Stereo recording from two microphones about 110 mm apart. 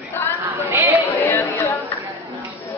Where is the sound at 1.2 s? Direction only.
20° left (ahead or behind).